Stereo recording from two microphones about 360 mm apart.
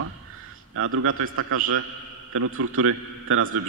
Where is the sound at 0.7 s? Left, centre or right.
Right.